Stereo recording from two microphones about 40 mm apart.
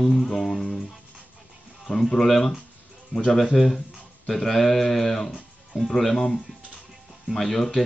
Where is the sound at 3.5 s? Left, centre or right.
Centre.